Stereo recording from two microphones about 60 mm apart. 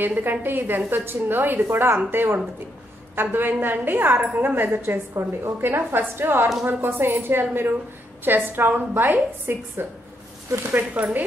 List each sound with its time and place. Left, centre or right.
0.0 s a woman's voice: right